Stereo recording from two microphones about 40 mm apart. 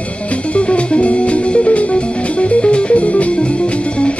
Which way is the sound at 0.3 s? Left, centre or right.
Left.